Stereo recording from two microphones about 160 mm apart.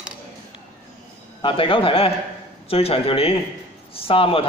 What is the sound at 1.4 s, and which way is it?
Speech, 35° left (ahead or behind).